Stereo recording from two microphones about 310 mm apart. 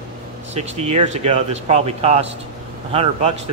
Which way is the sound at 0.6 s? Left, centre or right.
Right.